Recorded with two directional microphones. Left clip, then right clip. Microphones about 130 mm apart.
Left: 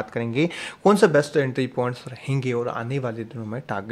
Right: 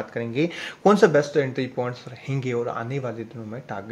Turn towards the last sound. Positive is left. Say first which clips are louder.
# left 4 dB
turn(degrees=40)  # may be behind; listen again after turning